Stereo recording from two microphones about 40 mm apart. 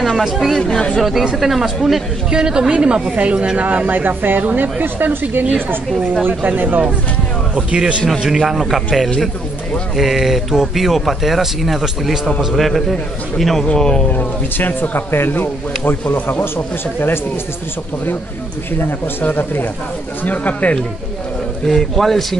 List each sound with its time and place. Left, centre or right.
0.2 s speech: centre
0.7 s speech: centre
1.4 s a man's voice: centre
2.3 s a woman's voice: centre; by 5.1 s right
6.2 s speech: right
7.5 s a woman's voice: right
8.1 s a man's voice: centre
13.7 s speech: centre
14.0 s speech: left
18.8 s speech: left
20.2 s speech: left
21.6 s speech: centre